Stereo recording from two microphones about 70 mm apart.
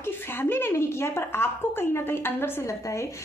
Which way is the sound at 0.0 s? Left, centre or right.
Left.